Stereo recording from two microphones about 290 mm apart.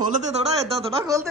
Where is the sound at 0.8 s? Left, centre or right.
Centre.